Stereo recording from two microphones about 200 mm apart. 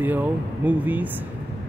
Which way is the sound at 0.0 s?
10° right (ahead or behind).